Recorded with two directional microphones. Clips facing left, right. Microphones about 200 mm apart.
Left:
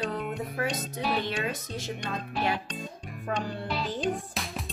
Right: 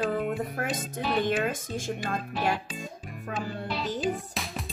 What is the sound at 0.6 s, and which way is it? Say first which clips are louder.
Music: even; 50° right (ahead or behind).